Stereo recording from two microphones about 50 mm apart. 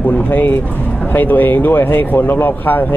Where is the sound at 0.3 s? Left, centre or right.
Left.